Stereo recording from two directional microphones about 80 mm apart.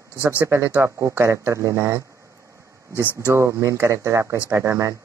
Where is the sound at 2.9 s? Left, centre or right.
Left.